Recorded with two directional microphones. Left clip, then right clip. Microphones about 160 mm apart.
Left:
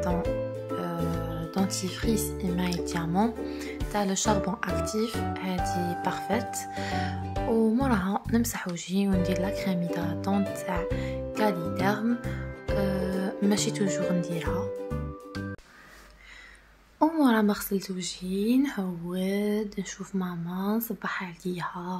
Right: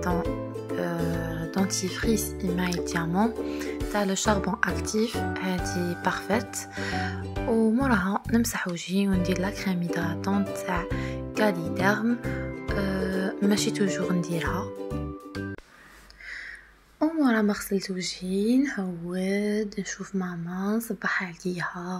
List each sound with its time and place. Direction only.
0.7 s music: 20° right (ahead or behind)
1.2 s speech: 20° right (ahead or behind)
17.0 s a woman's voice: centre (ahead or behind)